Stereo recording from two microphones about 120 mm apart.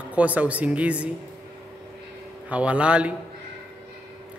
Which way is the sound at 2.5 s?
10° right (ahead or behind).